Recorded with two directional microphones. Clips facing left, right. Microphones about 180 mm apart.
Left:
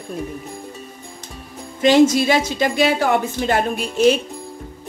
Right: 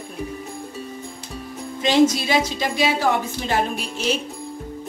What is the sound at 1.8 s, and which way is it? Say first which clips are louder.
A woman's voice: left 4 dB; 55° left (ahead or behind).